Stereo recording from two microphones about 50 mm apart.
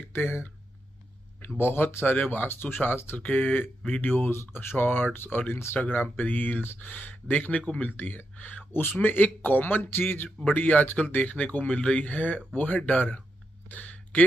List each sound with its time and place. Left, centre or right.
0.1 s speech: left
1.6 s speech: left
3.2 s speech: left
5.8 s speech: left
7.9 s speech: left
13.7 s a sound: left